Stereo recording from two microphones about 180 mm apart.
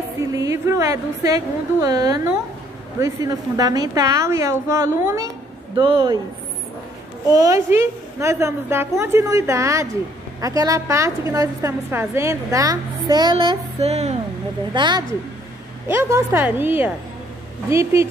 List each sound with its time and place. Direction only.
0.3 s a woman's voice: 20° right (ahead or behind)
7.3 s a woman's voice: 15° right (ahead or behind); by 14.1 s 35° right (ahead or behind)
14.7 s a woman's voice: 25° right (ahead or behind)
15.9 s a woman's voice: 15° right (ahead or behind)